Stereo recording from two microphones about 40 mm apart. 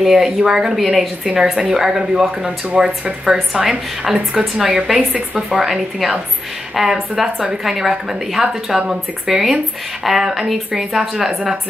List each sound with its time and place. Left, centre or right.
0.0 s speech: centre
4.9 s a woman's voice: right
5.5 s speech: centre